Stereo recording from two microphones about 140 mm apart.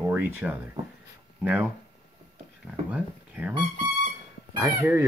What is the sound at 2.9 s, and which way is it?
Speech, 10° right (ahead or behind).